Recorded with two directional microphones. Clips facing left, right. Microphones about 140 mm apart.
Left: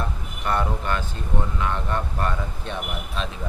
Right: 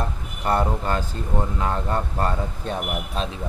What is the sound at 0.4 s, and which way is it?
Speech, 35° right (ahead or behind).